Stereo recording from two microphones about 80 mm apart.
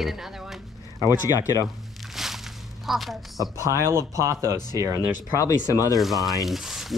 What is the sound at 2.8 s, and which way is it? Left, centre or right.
Speech, centre.